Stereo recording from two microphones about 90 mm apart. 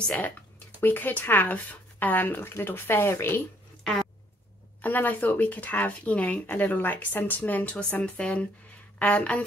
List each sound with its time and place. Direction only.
0.0 s speech: 15° left (ahead or behind)
4.8 s speech: 20° left (ahead or behind)